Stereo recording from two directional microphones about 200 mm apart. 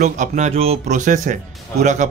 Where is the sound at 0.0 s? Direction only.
35° right (ahead or behind).